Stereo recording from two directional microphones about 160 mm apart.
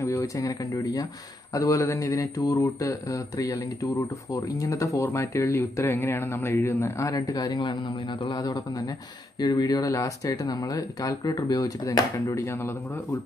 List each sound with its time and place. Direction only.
0.0 s speech: 20° left (ahead or behind)